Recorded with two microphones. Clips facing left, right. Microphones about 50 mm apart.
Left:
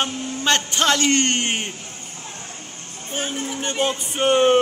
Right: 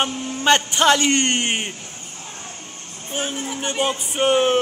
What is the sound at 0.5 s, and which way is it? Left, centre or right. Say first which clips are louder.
A man's voice: right 4 dB; centre.